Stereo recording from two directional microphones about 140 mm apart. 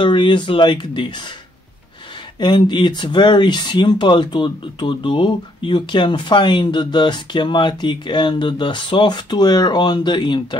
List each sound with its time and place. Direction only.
0.0 s speech: 35° left (ahead or behind)
2.3 s speech: 35° left (ahead or behind)